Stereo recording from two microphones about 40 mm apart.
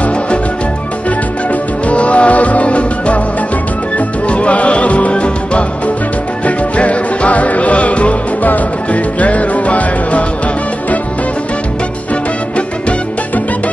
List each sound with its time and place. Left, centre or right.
1.5 s music: left
4.3 s music: left